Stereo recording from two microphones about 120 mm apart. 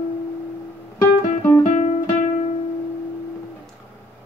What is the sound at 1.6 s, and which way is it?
Guitar, 90° left.